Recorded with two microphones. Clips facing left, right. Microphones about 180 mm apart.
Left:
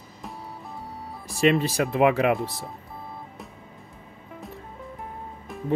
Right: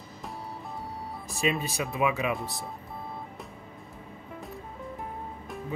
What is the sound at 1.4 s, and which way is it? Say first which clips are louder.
Speech: left 8 dB; 75° left (ahead or behind).